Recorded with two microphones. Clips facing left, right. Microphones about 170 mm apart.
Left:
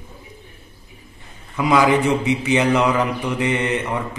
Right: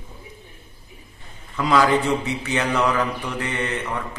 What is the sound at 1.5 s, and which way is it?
A man's voice, 15° left (ahead or behind).